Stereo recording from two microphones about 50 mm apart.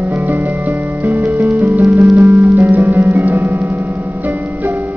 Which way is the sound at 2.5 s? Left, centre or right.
Right.